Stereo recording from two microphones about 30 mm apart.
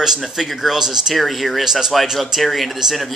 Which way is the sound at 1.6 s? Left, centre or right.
Centre.